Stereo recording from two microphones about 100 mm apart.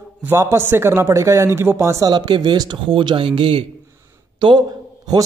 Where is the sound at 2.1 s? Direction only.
50° right (ahead or behind).